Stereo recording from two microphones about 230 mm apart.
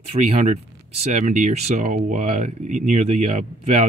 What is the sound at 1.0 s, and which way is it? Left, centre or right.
Speech, right.